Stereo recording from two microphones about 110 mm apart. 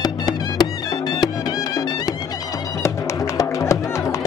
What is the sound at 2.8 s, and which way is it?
Music, 30° left (ahead or behind).